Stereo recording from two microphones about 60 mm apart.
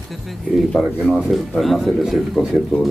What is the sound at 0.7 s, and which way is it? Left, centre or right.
Speech, centre.